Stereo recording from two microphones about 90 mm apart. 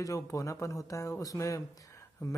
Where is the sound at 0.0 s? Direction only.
35° left (ahead or behind).